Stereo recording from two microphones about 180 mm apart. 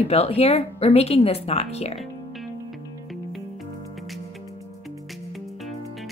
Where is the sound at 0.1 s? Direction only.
35° left (ahead or behind).